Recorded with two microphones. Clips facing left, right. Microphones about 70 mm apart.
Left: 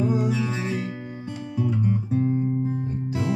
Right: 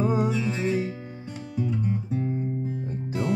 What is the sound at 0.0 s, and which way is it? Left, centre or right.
Music, right.